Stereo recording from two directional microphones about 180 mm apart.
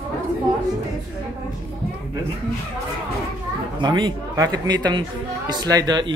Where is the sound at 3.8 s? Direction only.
25° right (ahead or behind).